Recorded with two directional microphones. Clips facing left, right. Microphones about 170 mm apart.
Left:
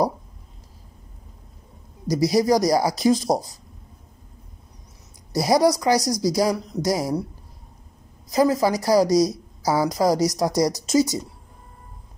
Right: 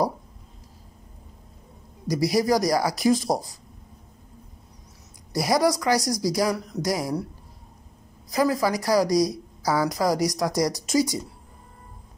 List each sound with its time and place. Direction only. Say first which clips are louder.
2.0 s a woman's voice: left 3 dB; 20° left (ahead or behind)
5.3 s a woman's voice: left 3 dB; 20° left (ahead or behind)
8.3 s a woman's voice: left 3 dB; 20° left (ahead or behind)